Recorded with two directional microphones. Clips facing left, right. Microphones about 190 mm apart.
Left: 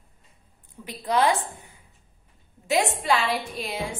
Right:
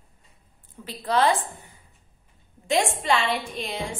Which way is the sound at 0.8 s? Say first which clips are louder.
Even; 10° left (ahead or behind).